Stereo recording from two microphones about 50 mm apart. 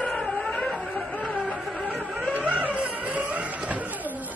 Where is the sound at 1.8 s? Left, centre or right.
Right.